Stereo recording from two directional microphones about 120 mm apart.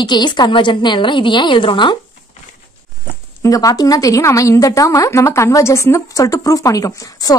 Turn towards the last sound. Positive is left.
turn(degrees=30)  # may be behind; listen again after turning